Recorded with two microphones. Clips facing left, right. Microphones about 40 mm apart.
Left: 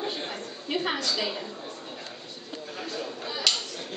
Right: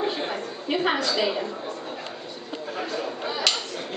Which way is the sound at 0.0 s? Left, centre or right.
Centre.